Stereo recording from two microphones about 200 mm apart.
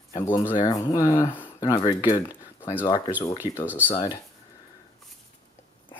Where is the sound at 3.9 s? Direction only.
20° left (ahead or behind).